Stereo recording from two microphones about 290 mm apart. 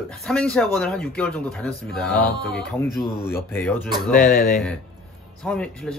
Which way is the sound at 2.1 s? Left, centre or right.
Left.